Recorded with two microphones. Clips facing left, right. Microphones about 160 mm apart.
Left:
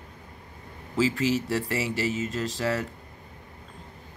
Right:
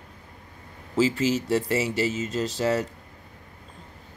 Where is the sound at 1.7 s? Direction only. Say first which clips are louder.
Right 3 dB; 25° right (ahead or behind).